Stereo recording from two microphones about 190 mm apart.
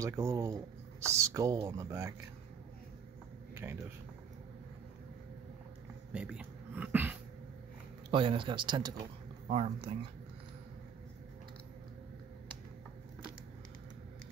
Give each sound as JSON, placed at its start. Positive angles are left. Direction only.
{"t": 0.0, "sound": "speech", "side_deg": -15}
{"t": 6.1, "sound": "dog", "side_deg": -5}
{"t": 8.1, "sound": "speech", "side_deg": -25}